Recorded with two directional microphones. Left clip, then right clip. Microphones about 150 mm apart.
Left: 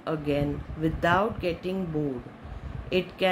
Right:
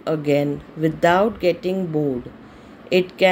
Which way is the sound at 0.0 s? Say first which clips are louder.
Right 8 dB; 40° right (ahead or behind).